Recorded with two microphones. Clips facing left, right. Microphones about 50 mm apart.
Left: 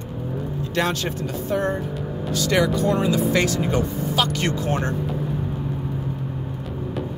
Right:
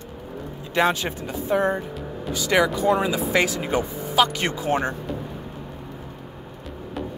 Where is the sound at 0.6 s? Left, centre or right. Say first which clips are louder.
Right 3 dB; centre.